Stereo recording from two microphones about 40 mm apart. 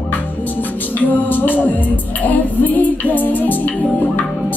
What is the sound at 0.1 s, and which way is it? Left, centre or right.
Speech, left.